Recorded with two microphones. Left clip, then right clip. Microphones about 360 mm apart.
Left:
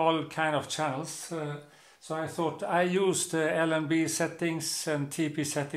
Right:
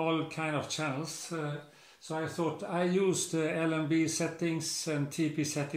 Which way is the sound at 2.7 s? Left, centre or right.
Left.